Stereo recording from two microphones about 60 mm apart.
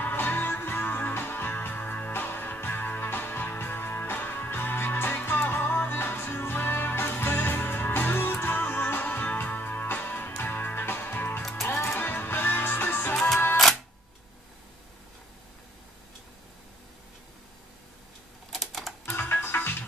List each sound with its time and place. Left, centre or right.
0.0 s music: left
18.5 s typewriter: centre
19.0 s music: left